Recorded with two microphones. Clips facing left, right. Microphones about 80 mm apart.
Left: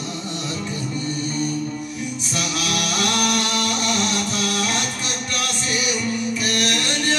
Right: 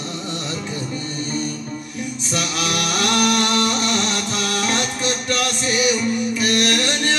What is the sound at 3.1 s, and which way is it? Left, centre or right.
Music, right.